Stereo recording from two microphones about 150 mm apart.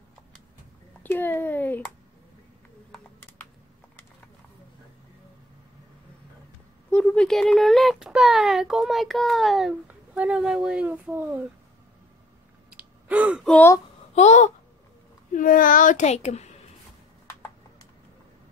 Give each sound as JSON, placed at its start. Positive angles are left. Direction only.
{"t": 1.0, "sound": "a sound", "side_deg": 15}
{"t": 6.9, "sound": "speech", "side_deg": 5}
{"t": 12.6, "sound": "sigh", "side_deg": -10}
{"t": 13.4, "sound": "speech", "side_deg": 5}
{"t": 14.1, "sound": "speech", "side_deg": 50}
{"t": 15.3, "sound": "a child's voice", "side_deg": 65}